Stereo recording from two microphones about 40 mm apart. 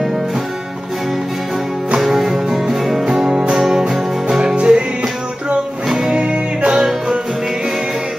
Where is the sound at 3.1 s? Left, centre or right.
Right.